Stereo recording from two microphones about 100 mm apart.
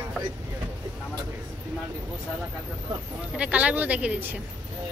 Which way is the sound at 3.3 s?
15° right (ahead or behind).